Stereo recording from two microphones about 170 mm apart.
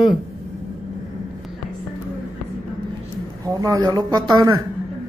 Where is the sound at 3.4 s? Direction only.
20° right (ahead or behind).